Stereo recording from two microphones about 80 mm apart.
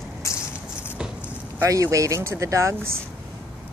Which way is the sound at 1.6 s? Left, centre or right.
Right.